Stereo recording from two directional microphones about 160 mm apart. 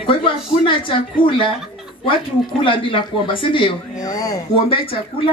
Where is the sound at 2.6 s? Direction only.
35° left (ahead or behind).